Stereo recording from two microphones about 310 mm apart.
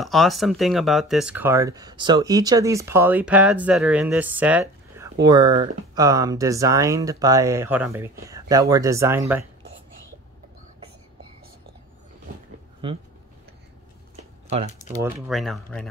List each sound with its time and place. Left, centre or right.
0.0 s speech: centre
14.1 s a sound: centre
15.0 s speech: centre